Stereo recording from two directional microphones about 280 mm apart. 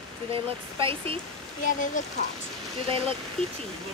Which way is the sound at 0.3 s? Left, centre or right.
Centre.